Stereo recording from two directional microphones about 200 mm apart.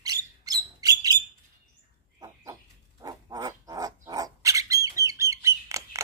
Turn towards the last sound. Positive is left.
turn(degrees=-15)  # may be behind; listen again after turning